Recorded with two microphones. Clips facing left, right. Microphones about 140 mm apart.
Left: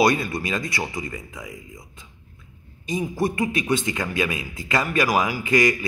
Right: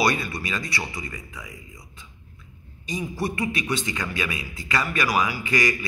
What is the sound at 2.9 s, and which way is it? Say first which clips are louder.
A man's voice: left 4 dB; 50° left (ahead or behind).